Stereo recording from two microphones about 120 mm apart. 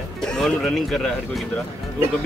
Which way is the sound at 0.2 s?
5° left (ahead or behind).